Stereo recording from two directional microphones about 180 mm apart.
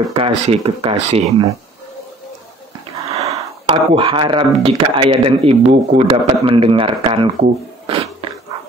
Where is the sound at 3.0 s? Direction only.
35° right (ahead or behind).